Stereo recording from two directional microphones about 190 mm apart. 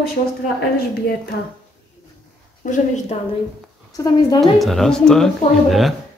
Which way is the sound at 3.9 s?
20° left (ahead or behind).